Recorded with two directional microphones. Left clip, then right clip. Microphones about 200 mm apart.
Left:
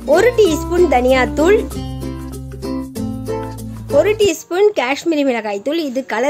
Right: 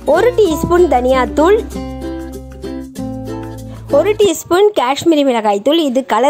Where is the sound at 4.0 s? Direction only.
25° right (ahead or behind).